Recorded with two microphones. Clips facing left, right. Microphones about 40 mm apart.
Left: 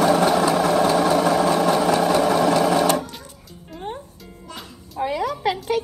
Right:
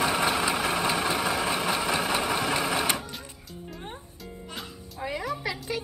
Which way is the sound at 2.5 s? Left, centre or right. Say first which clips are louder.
Left 9 dB; right.